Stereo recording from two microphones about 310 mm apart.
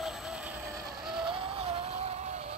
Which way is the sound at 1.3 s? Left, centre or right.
Centre.